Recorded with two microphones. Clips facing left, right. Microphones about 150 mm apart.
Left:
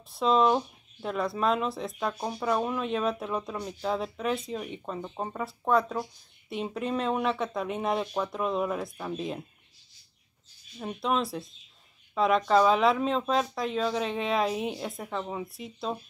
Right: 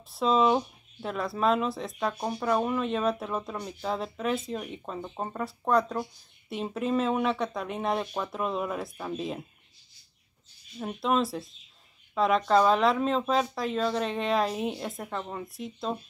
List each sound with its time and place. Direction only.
0.1 s speech: centre (ahead or behind)
10.8 s speech: centre (ahead or behind)